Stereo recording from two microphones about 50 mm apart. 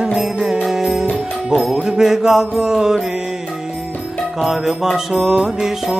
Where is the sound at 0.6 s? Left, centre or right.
Centre.